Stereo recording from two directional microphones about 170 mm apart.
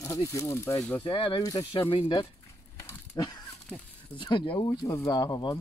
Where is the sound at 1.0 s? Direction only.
30° left (ahead or behind).